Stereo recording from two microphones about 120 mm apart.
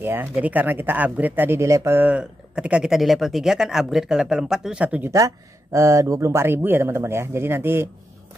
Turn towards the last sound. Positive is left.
turn(degrees=-20)  # may be behind; listen again after turning